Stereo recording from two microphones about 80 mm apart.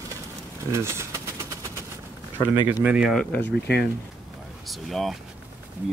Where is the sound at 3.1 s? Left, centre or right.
Centre.